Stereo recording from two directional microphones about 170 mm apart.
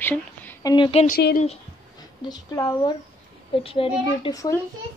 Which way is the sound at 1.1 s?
75° left (ahead or behind).